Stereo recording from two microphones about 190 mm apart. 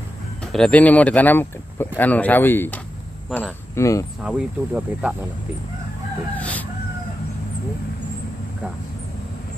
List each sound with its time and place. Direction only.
0.4 s speech: 5° left (ahead or behind)
3.3 s speech: centre (ahead or behind)
3.7 s speech: 15° left (ahead or behind)
4.2 s speech: 5° right (ahead or behind)
6.3 s chicken: 10° left (ahead or behind)